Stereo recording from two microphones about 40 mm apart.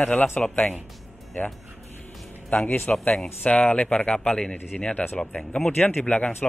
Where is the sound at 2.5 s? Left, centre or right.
Left.